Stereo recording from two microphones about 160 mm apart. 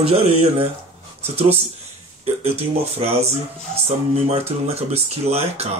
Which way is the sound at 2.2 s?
40° right (ahead or behind).